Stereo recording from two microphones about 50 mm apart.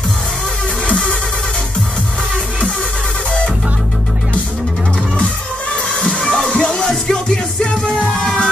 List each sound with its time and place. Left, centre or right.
0.8 s music: left
5.9 s music: centre